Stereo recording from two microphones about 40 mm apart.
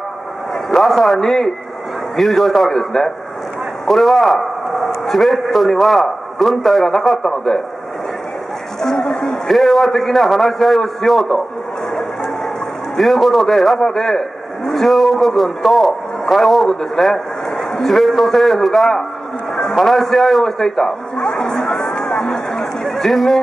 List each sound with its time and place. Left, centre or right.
0.7 s a man's voice: centre
8.8 s a sound: centre
9.5 s a man's voice: centre
12.9 s a man's voice: centre
21.5 s crowd: centre
22.8 s speech: centre